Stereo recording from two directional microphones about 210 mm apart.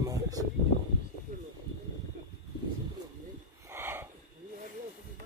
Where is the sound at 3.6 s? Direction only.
10° right (ahead or behind).